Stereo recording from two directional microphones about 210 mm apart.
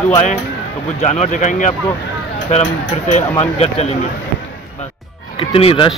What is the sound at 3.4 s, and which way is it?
Speech, 30° left (ahead or behind).